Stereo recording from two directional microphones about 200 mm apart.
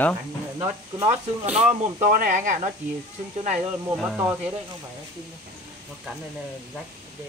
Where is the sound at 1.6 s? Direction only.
40° right (ahead or behind).